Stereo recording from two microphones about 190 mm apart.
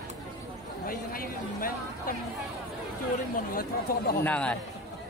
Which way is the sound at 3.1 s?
50° left (ahead or behind).